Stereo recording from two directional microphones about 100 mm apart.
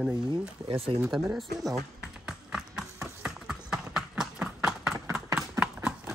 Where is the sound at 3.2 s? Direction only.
5° right (ahead or behind).